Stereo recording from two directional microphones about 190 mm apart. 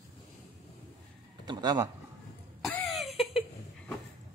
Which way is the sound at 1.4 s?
20° right (ahead or behind).